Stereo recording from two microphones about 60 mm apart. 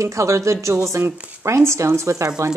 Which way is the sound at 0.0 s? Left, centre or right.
Right.